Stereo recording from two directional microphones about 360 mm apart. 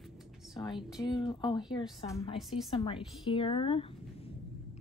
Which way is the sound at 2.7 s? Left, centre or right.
Centre.